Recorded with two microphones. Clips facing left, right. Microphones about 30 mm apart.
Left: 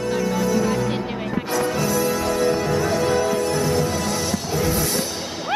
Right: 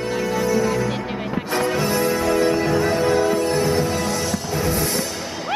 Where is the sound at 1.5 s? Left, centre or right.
Right.